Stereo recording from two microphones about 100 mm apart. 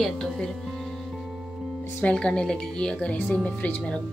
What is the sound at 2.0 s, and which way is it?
Speech, 10° left (ahead or behind).